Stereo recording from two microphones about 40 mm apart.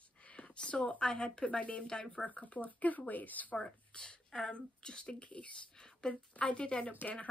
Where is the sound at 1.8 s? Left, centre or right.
Centre.